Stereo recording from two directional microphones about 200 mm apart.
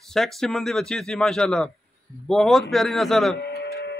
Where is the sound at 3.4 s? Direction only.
55° left (ahead or behind).